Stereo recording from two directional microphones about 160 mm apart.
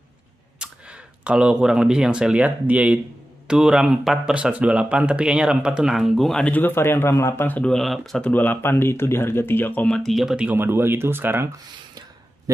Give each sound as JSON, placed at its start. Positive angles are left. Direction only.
{"t": 0.6, "sound": "speech", "side_deg": -5}